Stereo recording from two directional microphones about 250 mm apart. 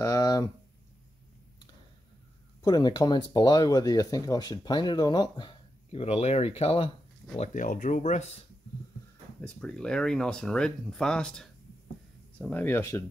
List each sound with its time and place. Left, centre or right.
0.0 s a sound: centre
2.6 s speech: centre
9.4 s speech: centre